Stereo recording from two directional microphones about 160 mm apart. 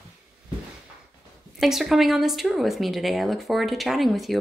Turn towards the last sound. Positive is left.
turn(degrees=0)  # may be behind; listen again after turning